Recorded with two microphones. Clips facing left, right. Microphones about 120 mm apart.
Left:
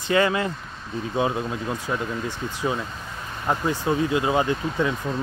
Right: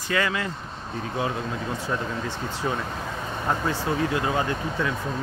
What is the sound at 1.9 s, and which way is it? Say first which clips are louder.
Speech: left 1 dB; 15° left (ahead or behind).